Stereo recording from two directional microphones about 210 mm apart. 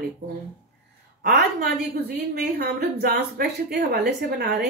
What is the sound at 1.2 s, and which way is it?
A woman's voice, 50° right (ahead or behind).